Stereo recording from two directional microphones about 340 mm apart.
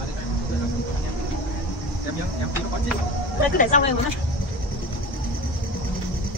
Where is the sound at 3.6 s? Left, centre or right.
Left.